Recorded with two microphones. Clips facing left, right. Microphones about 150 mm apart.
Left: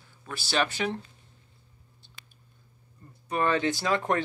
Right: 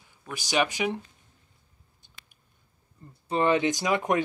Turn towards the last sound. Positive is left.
turn(degrees=-15)  # may be behind; listen again after turning